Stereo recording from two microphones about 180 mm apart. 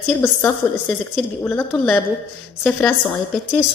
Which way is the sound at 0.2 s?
10° left (ahead or behind).